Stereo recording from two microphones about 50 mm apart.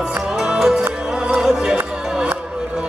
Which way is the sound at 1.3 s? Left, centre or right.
Centre.